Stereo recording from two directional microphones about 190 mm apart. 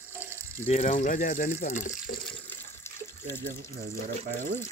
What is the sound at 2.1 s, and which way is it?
Water, 65° left (ahead or behind).